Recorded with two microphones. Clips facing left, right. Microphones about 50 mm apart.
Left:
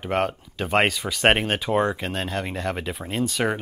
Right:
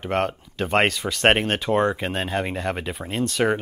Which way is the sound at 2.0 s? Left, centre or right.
Centre.